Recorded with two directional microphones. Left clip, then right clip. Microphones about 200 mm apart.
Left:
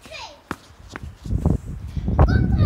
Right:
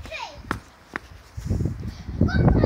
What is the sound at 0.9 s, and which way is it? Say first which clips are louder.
Walk: right 4 dB; 20° right (ahead or behind).